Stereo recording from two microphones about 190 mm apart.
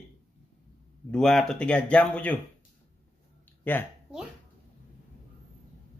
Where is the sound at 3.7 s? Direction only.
10° left (ahead or behind).